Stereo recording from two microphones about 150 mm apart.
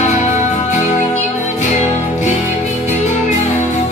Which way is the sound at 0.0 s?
50° left (ahead or behind).